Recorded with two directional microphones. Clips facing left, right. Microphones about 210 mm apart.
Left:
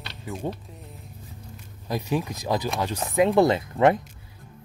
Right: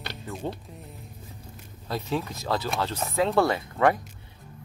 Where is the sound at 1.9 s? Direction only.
15° left (ahead or behind).